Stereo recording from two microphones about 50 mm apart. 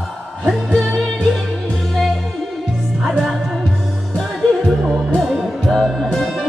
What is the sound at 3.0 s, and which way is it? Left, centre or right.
Music, centre.